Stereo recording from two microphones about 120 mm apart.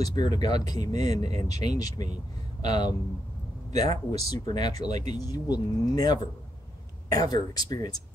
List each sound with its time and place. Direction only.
0.0 s speech: 35° left (ahead or behind)
4.8 s speech: 75° right (ahead or behind)
5.1 s speech: 30° left (ahead or behind)